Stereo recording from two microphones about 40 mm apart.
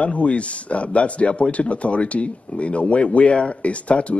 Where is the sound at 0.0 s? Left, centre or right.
Left.